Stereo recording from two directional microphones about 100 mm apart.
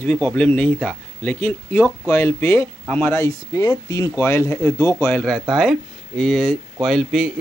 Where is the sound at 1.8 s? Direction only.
30° left (ahead or behind).